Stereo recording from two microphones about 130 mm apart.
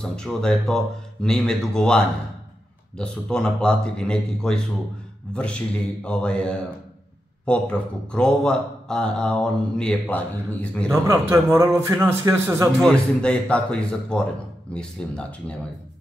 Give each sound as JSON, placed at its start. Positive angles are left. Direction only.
{"t": 0.0, "sound": "speech", "side_deg": 5}
{"t": 11.1, "sound": "a man's voice", "side_deg": -20}
{"t": 12.8, "sound": "speech", "side_deg": 10}